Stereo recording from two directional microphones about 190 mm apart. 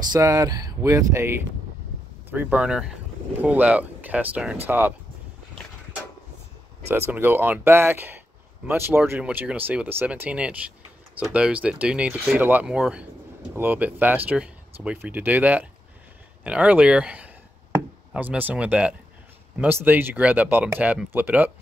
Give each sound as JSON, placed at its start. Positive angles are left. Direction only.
{"t": 0.0, "sound": "speech", "side_deg": -20}
{"t": 6.9, "sound": "speech", "side_deg": -10}